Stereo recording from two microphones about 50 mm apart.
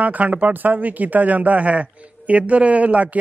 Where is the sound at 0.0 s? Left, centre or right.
Right.